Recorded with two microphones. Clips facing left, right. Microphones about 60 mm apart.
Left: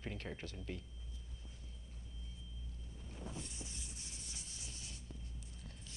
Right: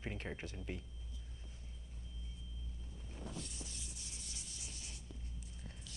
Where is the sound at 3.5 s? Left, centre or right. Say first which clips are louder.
Even; left.